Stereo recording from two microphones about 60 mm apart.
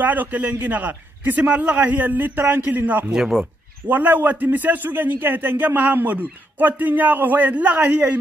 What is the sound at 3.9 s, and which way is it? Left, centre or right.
A man's voice, right.